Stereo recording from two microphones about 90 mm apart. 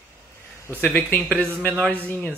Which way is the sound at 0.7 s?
20° left (ahead or behind).